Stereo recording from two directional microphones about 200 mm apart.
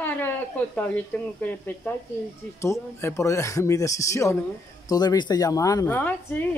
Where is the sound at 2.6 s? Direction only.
15° left (ahead or behind).